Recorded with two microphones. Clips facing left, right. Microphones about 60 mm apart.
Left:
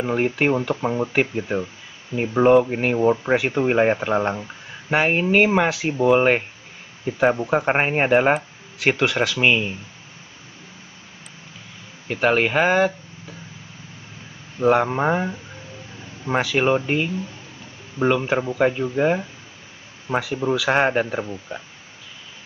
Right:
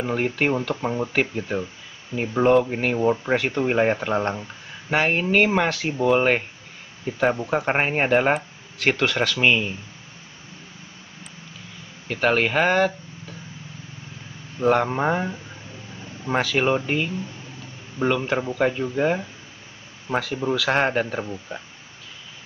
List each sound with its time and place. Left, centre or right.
0.0 s speech: centre
12.1 s speech: centre
14.6 s speech: centre